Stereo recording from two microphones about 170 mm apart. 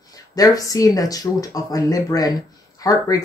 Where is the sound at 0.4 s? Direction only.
20° left (ahead or behind).